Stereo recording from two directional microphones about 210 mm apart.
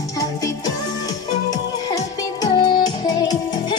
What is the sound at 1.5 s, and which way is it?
Music, 20° left (ahead or behind).